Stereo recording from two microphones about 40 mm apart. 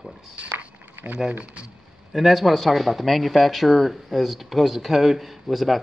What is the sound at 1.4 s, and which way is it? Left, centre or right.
Speech, right.